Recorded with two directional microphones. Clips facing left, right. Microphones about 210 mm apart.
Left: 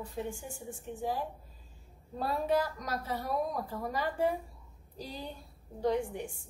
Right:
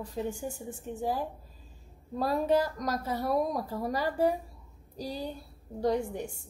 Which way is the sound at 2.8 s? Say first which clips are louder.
Right 4 dB; 40° right (ahead or behind).